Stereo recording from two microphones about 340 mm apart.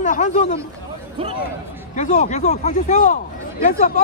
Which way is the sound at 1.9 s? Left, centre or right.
Left.